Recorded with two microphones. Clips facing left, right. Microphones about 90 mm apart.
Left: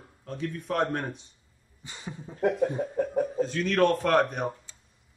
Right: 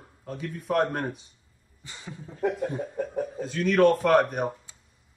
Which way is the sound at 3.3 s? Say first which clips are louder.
Right 4 dB; 5° right (ahead or behind).